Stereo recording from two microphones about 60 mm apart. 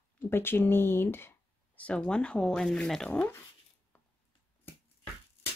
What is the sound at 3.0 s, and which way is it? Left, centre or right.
Speech, left.